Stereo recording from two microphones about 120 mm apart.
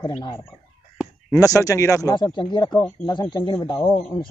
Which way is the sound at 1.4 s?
25° left (ahead or behind).